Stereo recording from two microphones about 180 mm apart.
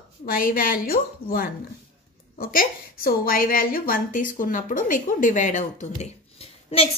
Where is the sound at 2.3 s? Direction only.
50° left (ahead or behind).